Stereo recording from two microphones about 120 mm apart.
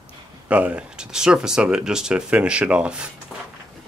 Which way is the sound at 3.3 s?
Centre (ahead or behind).